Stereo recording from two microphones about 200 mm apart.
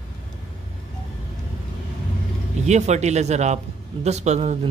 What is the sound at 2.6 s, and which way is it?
Speech, 35° right (ahead or behind).